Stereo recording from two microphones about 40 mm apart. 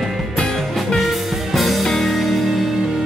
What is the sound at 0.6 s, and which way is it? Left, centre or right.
Music, centre.